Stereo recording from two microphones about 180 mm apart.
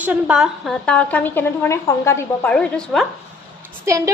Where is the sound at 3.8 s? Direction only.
15° right (ahead or behind).